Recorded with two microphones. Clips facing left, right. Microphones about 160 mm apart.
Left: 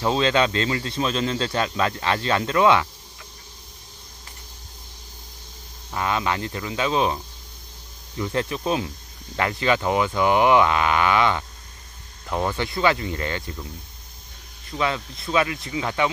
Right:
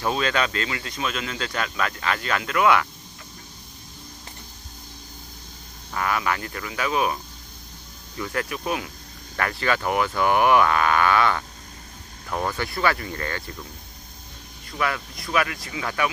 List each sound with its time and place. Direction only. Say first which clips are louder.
0.0 s speech: left 4 dB; 25° left (ahead or behind)
5.9 s speech: left 1 dB; 20° left (ahead or behind)
8.2 s speech: left 3 dB; 25° left (ahead or behind)
14.8 s speech: left 2 dB; 25° left (ahead or behind)